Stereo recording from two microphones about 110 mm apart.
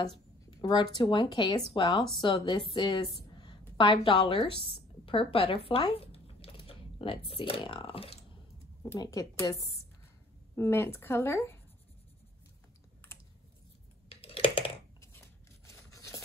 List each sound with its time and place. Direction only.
0.0 s a sound: 40° left (ahead or behind)
1.0 s a woman's voice: 50° left (ahead or behind)
5.9 s typing: 60° left (ahead or behind)
9.0 s a woman's voice: 30° left (ahead or behind)
14.0 s computer keyboard: 60° left (ahead or behind)
15.0 s scissors: 25° left (ahead or behind)